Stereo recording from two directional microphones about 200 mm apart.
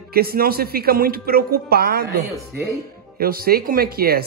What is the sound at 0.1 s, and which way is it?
Speech, 50° right (ahead or behind).